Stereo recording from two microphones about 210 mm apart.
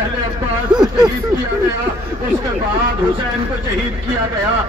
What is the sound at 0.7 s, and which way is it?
Speech, 20° right (ahead or behind).